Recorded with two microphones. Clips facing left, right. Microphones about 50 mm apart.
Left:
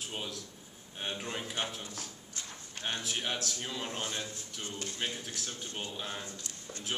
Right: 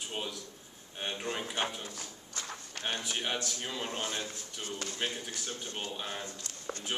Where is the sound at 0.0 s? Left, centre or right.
Centre.